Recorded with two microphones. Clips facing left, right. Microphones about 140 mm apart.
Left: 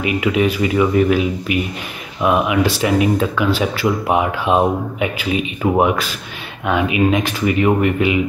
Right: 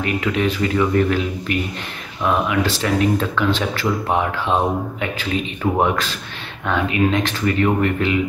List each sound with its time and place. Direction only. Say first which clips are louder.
0.0 s speech: left 3 dB; 10° left (ahead or behind)